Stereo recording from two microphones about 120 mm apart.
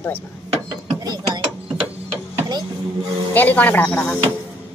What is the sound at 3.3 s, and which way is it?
Speech, 15° left (ahead or behind).